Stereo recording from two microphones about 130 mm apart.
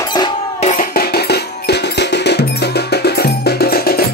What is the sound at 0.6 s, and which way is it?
Music, 65° left (ahead or behind).